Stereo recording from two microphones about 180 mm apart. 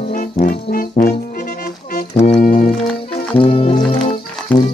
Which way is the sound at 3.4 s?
30° left (ahead or behind).